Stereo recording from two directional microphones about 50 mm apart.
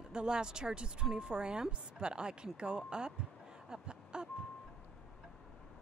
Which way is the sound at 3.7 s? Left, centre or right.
Centre.